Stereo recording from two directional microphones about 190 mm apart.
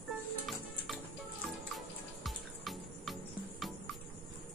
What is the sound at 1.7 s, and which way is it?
Music, centre (ahead or behind).